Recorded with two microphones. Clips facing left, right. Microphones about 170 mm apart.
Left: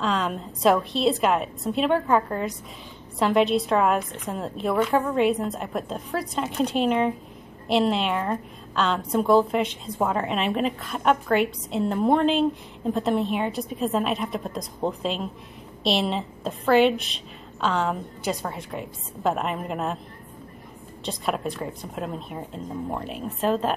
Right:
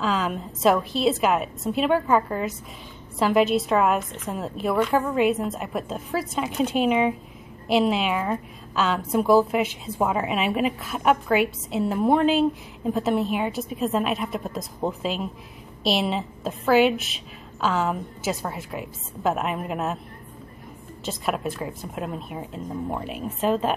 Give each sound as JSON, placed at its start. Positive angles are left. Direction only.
{"t": 0.0, "sound": "a woman's voice", "side_deg": -5}
{"t": 21.0, "sound": "a woman's voice", "side_deg": -5}